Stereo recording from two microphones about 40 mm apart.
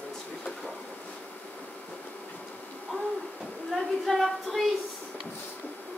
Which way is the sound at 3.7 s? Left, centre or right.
Centre.